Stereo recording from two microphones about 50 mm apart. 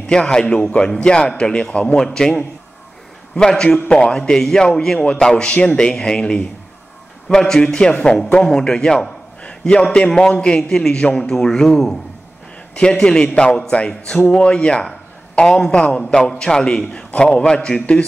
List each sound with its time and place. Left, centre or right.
0.0 s a man's voice: centre
2.0 s a man's voice: centre